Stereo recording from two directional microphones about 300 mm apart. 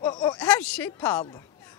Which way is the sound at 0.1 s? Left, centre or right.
Centre.